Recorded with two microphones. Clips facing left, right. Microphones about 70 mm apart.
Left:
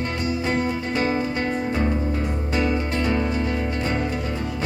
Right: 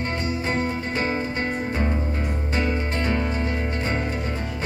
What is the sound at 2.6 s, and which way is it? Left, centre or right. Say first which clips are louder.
Music: left 2 dB; right.